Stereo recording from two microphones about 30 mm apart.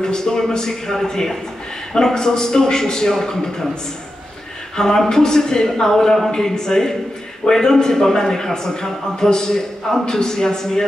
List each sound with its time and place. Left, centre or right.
0.0 s a man's voice: left
4.7 s a man's voice: centre